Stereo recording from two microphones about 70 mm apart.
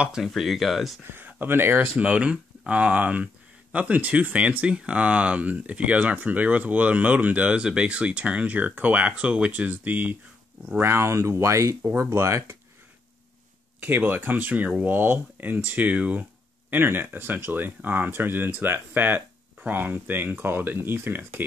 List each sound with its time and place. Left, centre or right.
0.0 s speech: centre
1.0 s speech: right
2.0 s speech: centre
10.8 s speech: right
13.7 s speech: right